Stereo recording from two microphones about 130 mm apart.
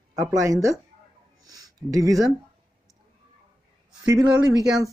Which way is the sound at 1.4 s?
30° right (ahead or behind).